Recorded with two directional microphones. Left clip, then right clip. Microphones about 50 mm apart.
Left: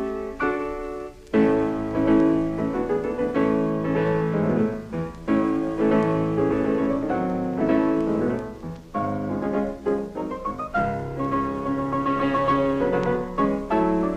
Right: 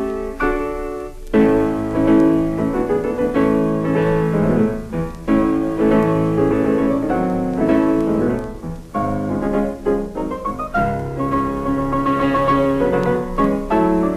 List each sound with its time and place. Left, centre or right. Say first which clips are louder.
0.0 s music: right 5 dB; left